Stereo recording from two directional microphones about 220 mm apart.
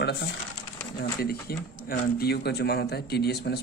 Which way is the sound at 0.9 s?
45° left (ahead or behind).